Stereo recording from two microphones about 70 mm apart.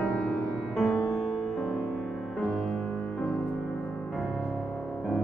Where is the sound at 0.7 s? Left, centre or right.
Centre.